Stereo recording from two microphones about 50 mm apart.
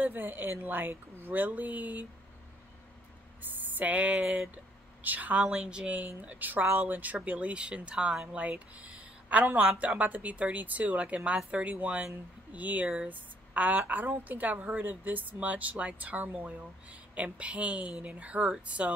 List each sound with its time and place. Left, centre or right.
0.0 s a woman's voice: right
3.5 s a woman's voice: right
12.8 s speech: centre
13.1 s a woman's voice: right